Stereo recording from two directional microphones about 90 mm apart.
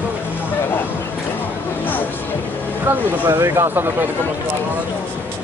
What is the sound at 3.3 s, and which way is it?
Speech, 30° right (ahead or behind).